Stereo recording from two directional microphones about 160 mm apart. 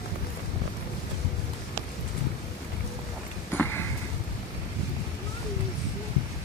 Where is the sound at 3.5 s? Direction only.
10° left (ahead or behind).